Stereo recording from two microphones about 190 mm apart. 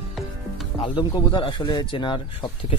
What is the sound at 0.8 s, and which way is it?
Speech, 25° left (ahead or behind).